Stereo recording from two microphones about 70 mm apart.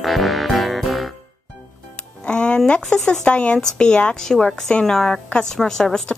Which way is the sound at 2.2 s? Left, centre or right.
Centre.